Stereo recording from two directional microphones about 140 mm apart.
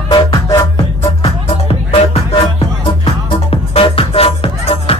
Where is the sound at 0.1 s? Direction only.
25° left (ahead or behind).